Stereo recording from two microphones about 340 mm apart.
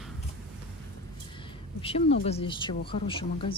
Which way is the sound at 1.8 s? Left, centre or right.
Centre.